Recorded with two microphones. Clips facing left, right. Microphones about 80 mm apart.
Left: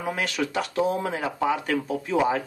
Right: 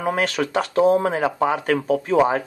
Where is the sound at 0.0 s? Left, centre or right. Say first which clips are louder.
Right 6 dB; right.